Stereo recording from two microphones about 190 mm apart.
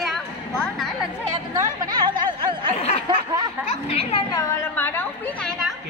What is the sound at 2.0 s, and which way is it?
Speech, 25° right (ahead or behind).